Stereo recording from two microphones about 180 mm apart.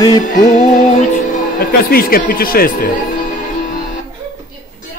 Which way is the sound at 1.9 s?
55° left (ahead or behind).